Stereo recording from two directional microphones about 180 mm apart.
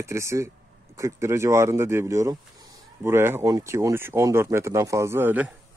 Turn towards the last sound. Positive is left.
turn(degrees=-10)  # may be behind; listen again after turning